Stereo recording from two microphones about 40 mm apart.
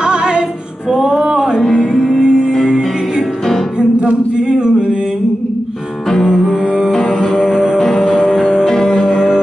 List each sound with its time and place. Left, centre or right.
0.0 s music: right
1.8 s music: centre
2.1 s music: centre
4.5 s music: centre
6.2 s music: centre
7.7 s music: centre
9.1 s music: centre